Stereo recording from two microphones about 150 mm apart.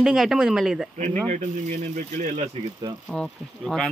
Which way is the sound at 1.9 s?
55° right (ahead or behind).